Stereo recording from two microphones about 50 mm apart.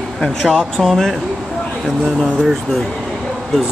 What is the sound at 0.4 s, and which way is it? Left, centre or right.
Speech, centre.